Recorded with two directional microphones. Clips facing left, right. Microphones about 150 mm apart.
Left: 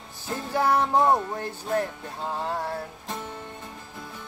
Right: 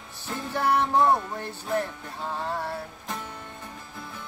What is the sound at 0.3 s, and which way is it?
Music, 40° left (ahead or behind).